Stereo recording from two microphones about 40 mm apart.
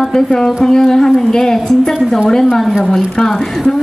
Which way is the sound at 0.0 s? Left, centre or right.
Centre.